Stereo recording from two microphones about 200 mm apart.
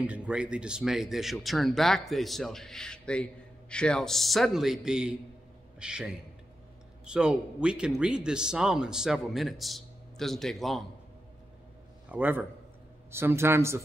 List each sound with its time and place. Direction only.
0.0 s a man's voice: 5° right (ahead or behind)
12.1 s a man's voice: 10° right (ahead or behind)